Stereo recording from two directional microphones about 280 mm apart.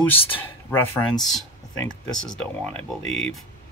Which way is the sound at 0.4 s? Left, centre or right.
Centre.